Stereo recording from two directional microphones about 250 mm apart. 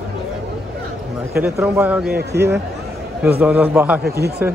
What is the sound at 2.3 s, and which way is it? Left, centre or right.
Speech, right.